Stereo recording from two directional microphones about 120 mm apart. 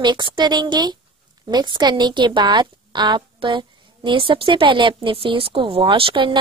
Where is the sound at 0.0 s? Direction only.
40° right (ahead or behind).